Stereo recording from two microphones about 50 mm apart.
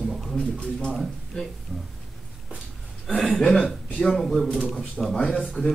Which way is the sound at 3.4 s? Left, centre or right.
Centre.